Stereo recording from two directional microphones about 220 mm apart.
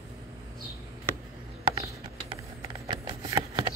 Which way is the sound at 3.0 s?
20° right (ahead or behind).